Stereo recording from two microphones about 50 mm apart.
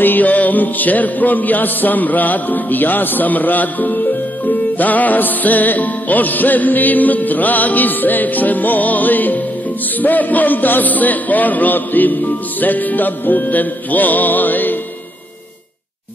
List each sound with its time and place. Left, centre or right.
0.0 s music: left